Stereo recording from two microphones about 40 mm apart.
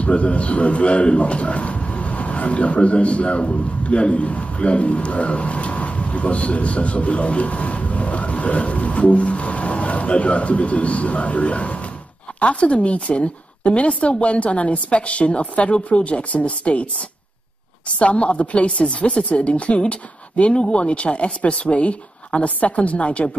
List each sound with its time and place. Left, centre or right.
0.0 s speech: left
17.8 s a woman's voice: left